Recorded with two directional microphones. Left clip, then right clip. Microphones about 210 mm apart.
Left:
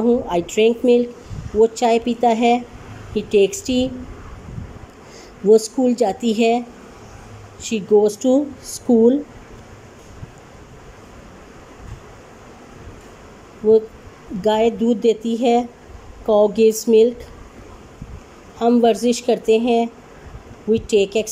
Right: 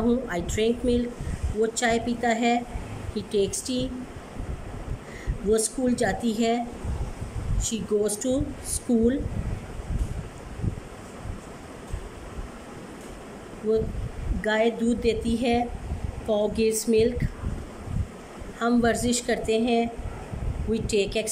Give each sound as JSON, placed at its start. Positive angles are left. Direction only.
{"t": 0.1, "sound": "a woman's voice", "side_deg": 10}
{"t": 5.5, "sound": "a woman's voice", "side_deg": 10}
{"t": 7.6, "sound": "a woman's voice", "side_deg": 10}
{"t": 8.9, "sound": "speech", "side_deg": 35}
{"t": 14.4, "sound": "a woman's voice", "side_deg": 10}
{"t": 18.6, "sound": "a woman's voice", "side_deg": 10}